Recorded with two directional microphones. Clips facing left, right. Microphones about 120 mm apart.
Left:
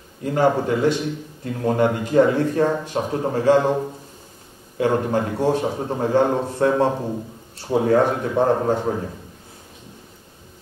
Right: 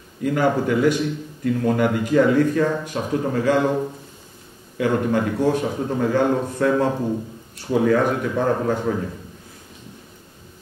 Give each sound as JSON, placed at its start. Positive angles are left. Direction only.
{"t": 0.2, "sound": "speech", "side_deg": 30}
{"t": 4.7, "sound": "speech", "side_deg": 30}